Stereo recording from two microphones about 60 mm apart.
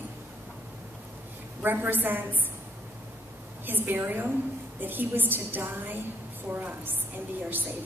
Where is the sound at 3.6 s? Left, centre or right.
Right.